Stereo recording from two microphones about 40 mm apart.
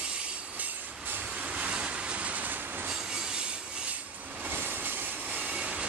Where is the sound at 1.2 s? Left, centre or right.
Right.